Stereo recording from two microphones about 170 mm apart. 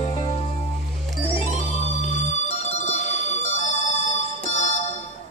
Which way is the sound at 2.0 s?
40° left (ahead or behind).